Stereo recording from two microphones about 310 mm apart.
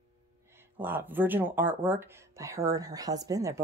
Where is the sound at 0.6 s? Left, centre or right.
Centre.